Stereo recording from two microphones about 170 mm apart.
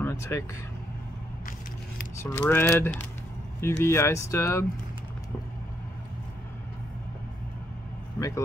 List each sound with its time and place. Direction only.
0.0 s vehicle: 15° left (ahead or behind)
2.1 s speech: 10° left (ahead or behind)